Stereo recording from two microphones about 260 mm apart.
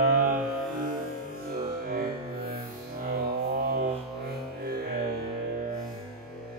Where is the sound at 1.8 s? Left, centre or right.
Right.